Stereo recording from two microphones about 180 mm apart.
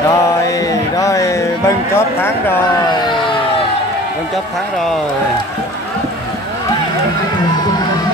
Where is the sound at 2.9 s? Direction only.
25° left (ahead or behind).